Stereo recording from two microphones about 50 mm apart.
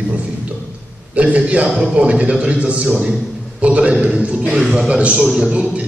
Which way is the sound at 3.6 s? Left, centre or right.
Right.